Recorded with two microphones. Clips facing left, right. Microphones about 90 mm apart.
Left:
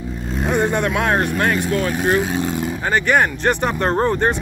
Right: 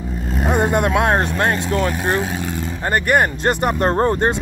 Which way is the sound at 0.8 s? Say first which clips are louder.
Right 2 dB; 20° right (ahead or behind).